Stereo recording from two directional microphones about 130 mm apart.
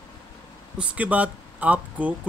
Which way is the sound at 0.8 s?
10° right (ahead or behind).